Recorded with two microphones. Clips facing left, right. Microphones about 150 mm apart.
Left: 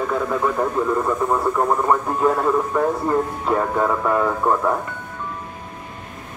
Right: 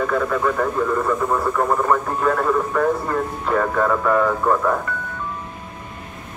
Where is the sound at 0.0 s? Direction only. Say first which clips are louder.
Right 1 dB; 15° left (ahead or behind).